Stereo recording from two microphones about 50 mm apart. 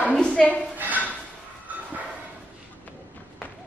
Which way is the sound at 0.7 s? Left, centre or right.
Right.